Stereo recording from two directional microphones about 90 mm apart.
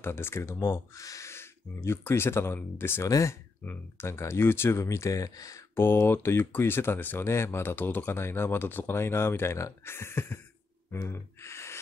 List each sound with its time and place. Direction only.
0.0 s speech: 25° left (ahead or behind)
3.1 s speech: 35° left (ahead or behind)
5.8 s speech: 25° left (ahead or behind)
10.9 s gasp: 30° left (ahead or behind)